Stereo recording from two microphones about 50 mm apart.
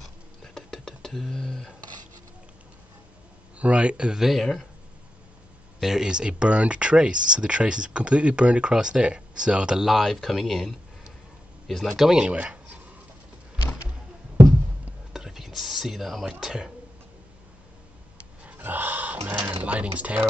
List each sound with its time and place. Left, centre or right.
0.6 s a sound: centre
3.5 s speech: right
4.3 s speech: centre
5.8 s speech: centre
9.8 s speech: centre
12.1 s speech: centre
15.1 s whispering: centre
16.3 s speech: centre
18.6 s a sound: right
19.5 s speech: right